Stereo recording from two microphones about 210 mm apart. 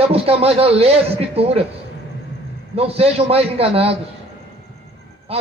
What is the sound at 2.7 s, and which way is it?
A man's voice, 30° right (ahead or behind).